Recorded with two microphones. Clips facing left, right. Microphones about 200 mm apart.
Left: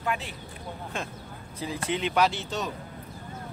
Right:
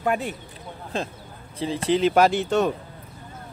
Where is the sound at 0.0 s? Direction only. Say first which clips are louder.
Right 7 dB; 50° right (ahead or behind).